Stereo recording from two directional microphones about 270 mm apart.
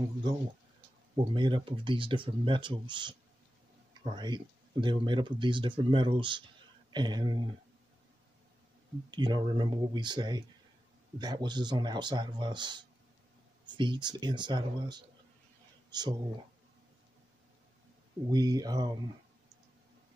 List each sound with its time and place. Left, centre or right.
1.1 s speech: centre
9.1 s speech: centre
18.3 s speech: centre